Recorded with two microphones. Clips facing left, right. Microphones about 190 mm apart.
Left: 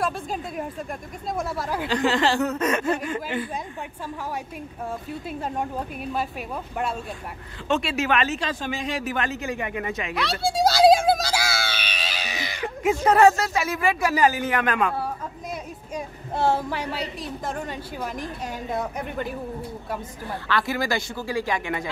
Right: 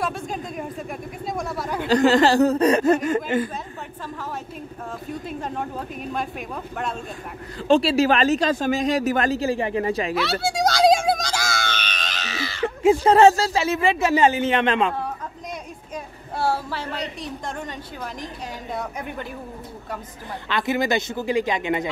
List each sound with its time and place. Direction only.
0.0 s speech: centre (ahead or behind)
1.9 s speech: 40° right (ahead or behind)
7.6 s speech: 35° right (ahead or behind)
10.1 s a sound: centre (ahead or behind); by 12.6 s 15° left (ahead or behind)
12.6 s speech: 30° right (ahead or behind)
16.3 s a woman's voice: 20° left (ahead or behind); by 19.2 s centre (ahead or behind)
20.4 s speech: 20° right (ahead or behind)